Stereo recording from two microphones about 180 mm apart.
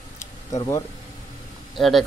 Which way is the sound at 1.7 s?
Centre (ahead or behind).